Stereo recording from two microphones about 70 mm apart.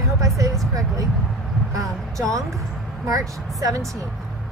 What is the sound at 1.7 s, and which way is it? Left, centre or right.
Vehicle, right.